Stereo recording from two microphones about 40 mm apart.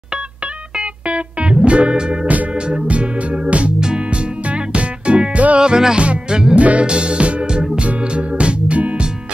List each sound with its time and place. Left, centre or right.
0.7 s music: right
5.6 s music: centre
5.9 s music: right